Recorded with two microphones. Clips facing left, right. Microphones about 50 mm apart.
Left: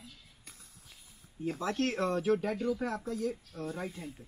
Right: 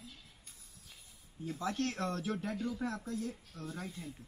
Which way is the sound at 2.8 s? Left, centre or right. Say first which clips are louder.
Left 4 dB; left.